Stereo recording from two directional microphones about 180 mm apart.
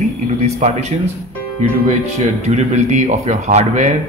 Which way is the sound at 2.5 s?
40° right (ahead or behind).